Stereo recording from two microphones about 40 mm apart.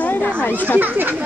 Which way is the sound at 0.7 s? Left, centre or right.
Right.